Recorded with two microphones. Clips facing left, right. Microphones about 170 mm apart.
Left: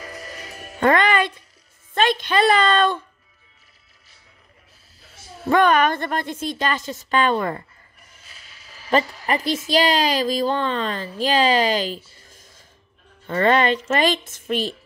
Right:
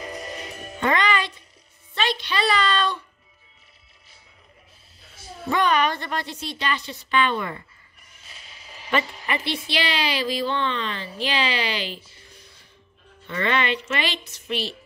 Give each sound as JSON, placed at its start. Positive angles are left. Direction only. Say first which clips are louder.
{"t": 0.0, "sound": "music", "louder": "right 3 dB", "side_deg": -20}
{"t": 0.7, "sound": "a woman's voice", "louder": "left 5 dB", "side_deg": 50}
{"t": 5.5, "sound": "a woman's voice", "louder": "left 5 dB", "side_deg": 50}
{"t": 8.3, "sound": "a sound", "louder": "right 4 dB", "side_deg": -25}
{"t": 9.2, "sound": "a woman's voice", "louder": "left 5 dB", "side_deg": 40}